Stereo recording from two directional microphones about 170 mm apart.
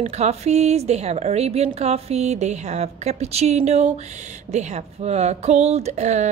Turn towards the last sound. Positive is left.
turn(degrees=-45)  # may be behind; listen again after turning